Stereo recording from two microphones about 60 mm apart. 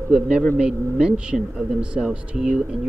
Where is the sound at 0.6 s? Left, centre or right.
Centre.